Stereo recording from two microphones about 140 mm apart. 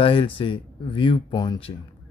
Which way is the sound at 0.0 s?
40° left (ahead or behind).